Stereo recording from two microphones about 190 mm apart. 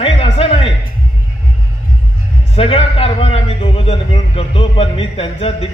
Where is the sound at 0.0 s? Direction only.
30° left (ahead or behind).